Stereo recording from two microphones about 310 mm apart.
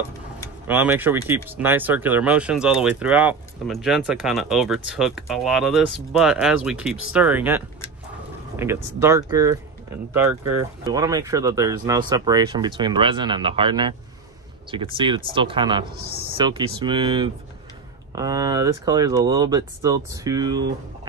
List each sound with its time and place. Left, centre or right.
0.7 s speech: centre
15.9 s a man's voice: right
16.3 s speech: centre